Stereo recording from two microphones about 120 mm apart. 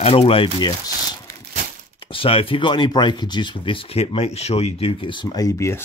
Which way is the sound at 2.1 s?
50° left (ahead or behind).